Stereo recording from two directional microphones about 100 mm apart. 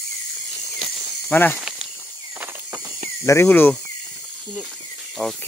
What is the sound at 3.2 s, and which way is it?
Speech, 25° left (ahead or behind).